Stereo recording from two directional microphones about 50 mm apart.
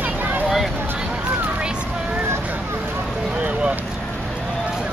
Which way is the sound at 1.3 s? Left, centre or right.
Right.